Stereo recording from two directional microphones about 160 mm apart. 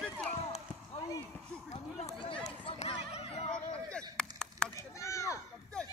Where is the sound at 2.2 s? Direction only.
35° left (ahead or behind).